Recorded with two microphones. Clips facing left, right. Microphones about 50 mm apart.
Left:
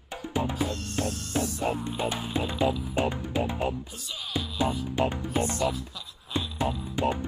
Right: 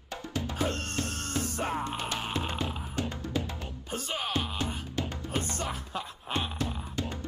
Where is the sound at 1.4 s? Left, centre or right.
Right.